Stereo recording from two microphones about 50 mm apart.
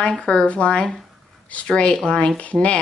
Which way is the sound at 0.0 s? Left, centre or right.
Left.